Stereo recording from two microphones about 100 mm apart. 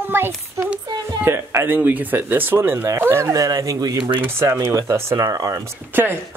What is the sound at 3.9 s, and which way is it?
Speech, 60° right (ahead or behind).